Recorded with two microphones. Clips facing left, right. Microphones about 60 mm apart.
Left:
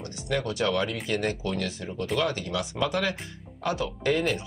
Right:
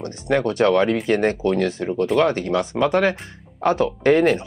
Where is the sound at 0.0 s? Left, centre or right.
Right.